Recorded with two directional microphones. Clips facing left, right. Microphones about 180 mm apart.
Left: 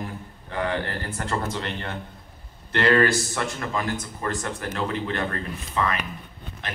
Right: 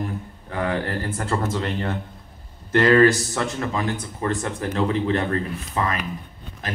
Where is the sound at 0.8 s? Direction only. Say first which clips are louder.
Right 4 dB; 35° right (ahead or behind).